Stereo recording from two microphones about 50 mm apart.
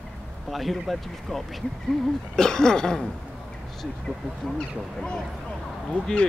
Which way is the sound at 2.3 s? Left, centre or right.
Centre.